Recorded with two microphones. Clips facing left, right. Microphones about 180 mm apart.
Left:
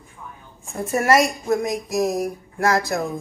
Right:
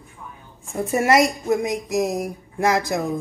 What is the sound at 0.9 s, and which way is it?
A woman's voice, 20° right (ahead or behind).